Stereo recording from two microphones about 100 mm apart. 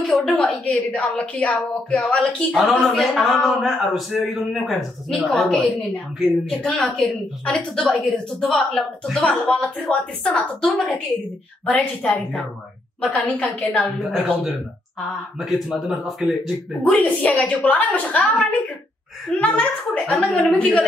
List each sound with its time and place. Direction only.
0.1 s a sound: 5° left (ahead or behind)
0.4 s a woman's voice: 10° left (ahead or behind)
13.7 s a woman's voice: centre (ahead or behind)
16.8 s a woman's voice: 15° left (ahead or behind)
19.3 s a woman's voice: 15° left (ahead or behind)